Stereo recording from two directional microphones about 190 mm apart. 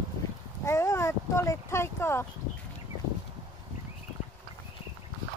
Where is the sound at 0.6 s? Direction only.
15° left (ahead or behind).